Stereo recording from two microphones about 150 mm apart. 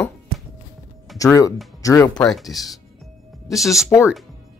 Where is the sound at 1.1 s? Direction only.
20° left (ahead or behind).